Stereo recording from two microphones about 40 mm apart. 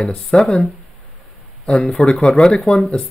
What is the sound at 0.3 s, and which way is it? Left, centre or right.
Speech, left.